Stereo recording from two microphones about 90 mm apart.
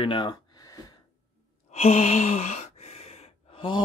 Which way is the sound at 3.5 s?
65° left (ahead or behind).